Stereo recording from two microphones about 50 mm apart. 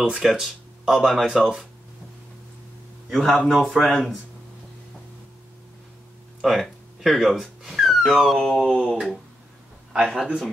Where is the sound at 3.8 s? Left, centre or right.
Centre.